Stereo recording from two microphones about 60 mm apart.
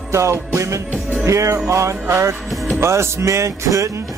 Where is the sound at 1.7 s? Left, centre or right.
Right.